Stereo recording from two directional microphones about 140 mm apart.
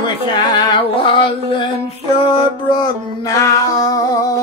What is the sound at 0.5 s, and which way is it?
Music, 35° left (ahead or behind).